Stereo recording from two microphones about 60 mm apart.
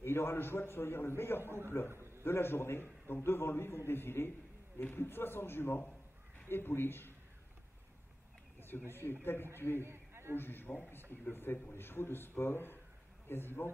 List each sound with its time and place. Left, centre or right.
0.0 s a man's voice: left
1.4 s a man's voice: right
2.2 s a man's voice: left
8.5 s a sound: left
9.2 s a man's voice: left
9.8 s a sound: right
10.3 s a man's voice: left